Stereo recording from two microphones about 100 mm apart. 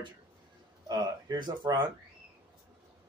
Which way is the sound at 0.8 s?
45° right (ahead or behind).